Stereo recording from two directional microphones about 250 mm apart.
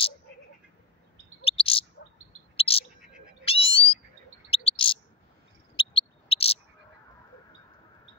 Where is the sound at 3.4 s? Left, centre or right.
Left.